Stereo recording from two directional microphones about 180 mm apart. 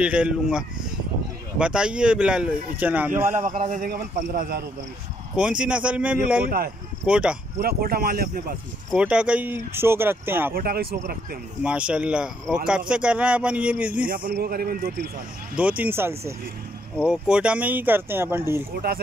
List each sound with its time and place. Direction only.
0.0 s speech: 5° right (ahead or behind)
3.3 s a man's voice: 45° right (ahead or behind)
5.3 s speech: 5° right (ahead or behind)
6.4 s a man's voice: 55° right (ahead or behind)
7.1 s speech: 5° right (ahead or behind)
7.6 s a man's voice: 55° right (ahead or behind)
8.9 s speech: 5° right (ahead or behind)
10.5 s a man's voice: 55° right (ahead or behind)
11.6 s speech: 5° right (ahead or behind)
14.0 s a man's voice: 50° right (ahead or behind)
15.5 s speech: 10° right (ahead or behind)